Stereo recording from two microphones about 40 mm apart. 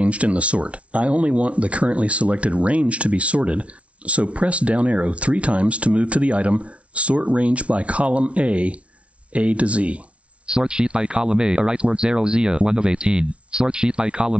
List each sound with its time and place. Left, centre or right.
0.0 s speech: right